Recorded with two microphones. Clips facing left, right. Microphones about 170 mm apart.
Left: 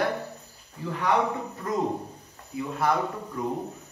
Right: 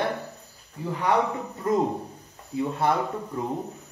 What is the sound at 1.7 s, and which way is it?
Speech, 25° right (ahead or behind).